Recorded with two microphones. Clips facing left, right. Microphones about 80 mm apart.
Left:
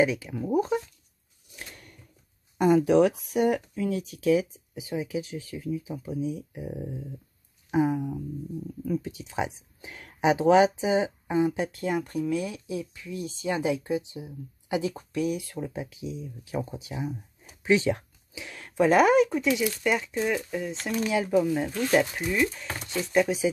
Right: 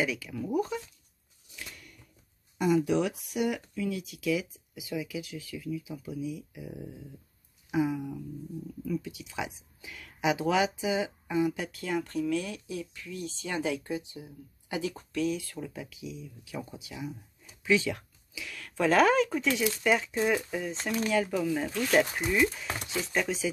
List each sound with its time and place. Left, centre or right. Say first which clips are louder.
0.0 s speech: left 7 dB; left
1.6 s a sound: left 1 dB; left
2.5 s speech: left 6 dB; left
17.6 s a sound: left 4 dB; left
18.8 s speech: left 4 dB; centre
21.1 s speech: left 5 dB; centre
22.3 s speech: even; centre